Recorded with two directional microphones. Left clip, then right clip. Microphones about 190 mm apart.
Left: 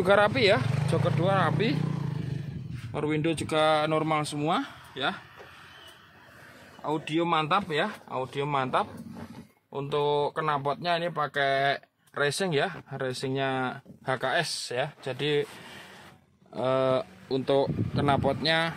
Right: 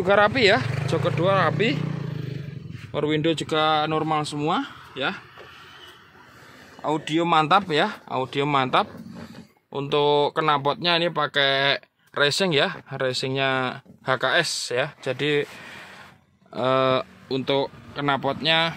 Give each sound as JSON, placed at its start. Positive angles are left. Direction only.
{"t": 0.0, "sound": "speech", "side_deg": -10}
{"t": 2.9, "sound": "speech", "side_deg": -10}
{"t": 6.8, "sound": "speech", "side_deg": -30}
{"t": 16.5, "sound": "speech", "side_deg": -20}